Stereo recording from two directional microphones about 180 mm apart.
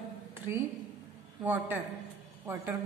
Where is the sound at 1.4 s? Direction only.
10° right (ahead or behind).